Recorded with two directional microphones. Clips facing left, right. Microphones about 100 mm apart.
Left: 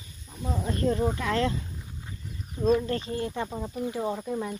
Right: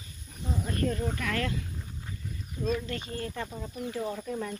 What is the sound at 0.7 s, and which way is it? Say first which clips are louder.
Speech: left 5 dB; 25° left (ahead or behind).